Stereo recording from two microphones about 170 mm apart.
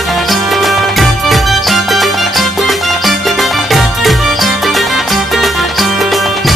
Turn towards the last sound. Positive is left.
turn(degrees=0)  # may be behind; listen again after turning